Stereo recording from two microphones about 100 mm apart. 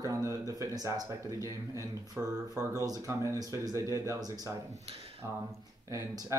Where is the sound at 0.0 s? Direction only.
30° right (ahead or behind).